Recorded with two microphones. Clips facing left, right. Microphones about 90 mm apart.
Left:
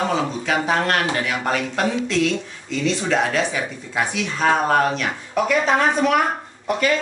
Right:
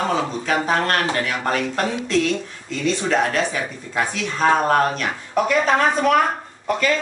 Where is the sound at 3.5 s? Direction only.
10° left (ahead or behind).